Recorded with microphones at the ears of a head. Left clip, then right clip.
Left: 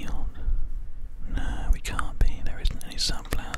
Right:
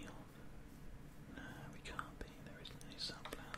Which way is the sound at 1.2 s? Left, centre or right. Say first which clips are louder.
Left 15 dB; left.